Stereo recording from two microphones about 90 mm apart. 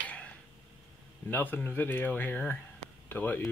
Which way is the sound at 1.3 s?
20° left (ahead or behind).